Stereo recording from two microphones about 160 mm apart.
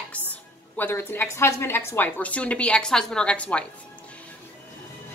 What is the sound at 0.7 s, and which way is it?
A woman's voice, 15° left (ahead or behind).